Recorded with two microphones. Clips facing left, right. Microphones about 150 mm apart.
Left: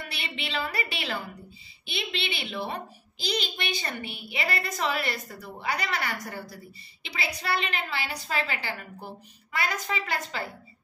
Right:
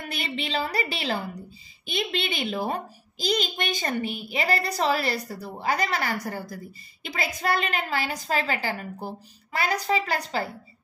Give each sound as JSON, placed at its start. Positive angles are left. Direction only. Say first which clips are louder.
{"t": 0.0, "sound": "a woman's voice", "louder": "right 5 dB", "side_deg": -45}